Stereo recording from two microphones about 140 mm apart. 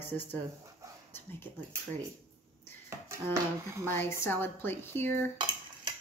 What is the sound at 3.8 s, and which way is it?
Speech, 15° left (ahead or behind).